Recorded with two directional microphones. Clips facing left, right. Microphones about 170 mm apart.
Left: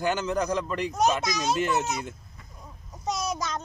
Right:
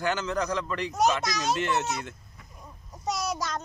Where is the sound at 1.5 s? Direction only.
5° left (ahead or behind).